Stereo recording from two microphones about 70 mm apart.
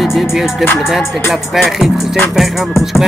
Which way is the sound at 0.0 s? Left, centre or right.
Centre.